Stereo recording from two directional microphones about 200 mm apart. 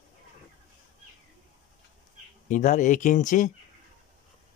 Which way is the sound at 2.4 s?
40° left (ahead or behind).